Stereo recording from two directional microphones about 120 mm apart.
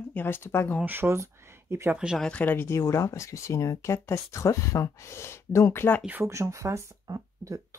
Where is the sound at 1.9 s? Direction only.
5° right (ahead or behind).